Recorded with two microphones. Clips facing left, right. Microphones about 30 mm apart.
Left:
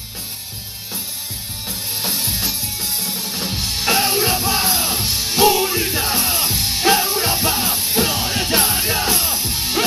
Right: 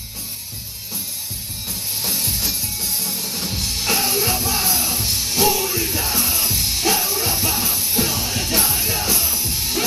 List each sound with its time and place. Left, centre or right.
1.7 s music: centre